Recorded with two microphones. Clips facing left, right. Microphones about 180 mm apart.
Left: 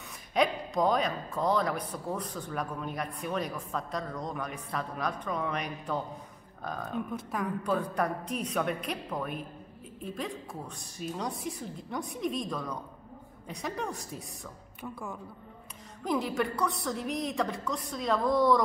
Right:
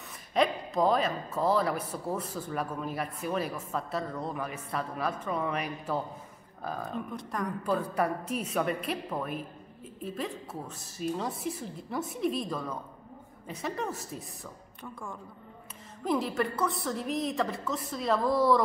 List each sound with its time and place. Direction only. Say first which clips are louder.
0.3 s speech: right 1 dB; centre (ahead or behind)